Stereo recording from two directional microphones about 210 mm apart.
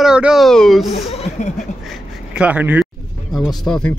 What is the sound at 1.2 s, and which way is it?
Speech, 35° left (ahead or behind).